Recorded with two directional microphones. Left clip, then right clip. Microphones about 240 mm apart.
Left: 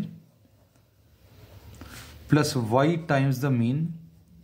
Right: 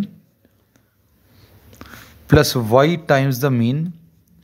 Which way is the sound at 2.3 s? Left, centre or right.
Right.